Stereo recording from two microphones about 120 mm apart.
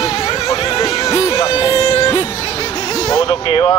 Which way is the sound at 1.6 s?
30° left (ahead or behind).